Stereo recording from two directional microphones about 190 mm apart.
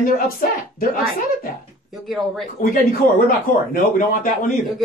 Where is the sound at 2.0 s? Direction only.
Centre (ahead or behind).